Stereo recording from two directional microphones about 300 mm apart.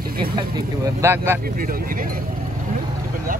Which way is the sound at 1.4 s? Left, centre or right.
Right.